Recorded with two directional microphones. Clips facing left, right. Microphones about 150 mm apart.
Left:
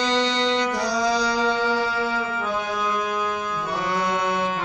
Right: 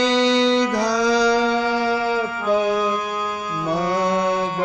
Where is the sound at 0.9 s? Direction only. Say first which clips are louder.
Right 6 dB; 90° right.